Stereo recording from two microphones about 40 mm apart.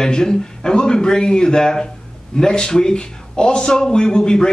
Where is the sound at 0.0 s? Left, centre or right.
Centre.